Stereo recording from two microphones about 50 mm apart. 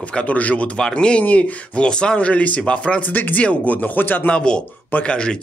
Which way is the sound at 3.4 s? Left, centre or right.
Left.